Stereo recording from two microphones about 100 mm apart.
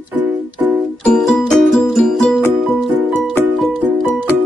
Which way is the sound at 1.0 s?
5° left (ahead or behind).